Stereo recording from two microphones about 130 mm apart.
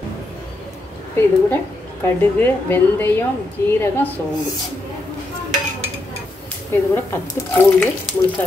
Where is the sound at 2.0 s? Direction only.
15° left (ahead or behind).